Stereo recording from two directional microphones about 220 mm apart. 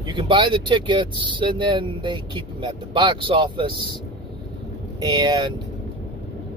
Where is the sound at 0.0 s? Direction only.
20° right (ahead or behind).